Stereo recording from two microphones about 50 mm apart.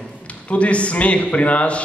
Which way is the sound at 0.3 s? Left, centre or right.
Left.